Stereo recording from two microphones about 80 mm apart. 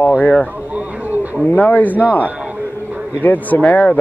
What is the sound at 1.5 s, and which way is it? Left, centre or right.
Speech, left.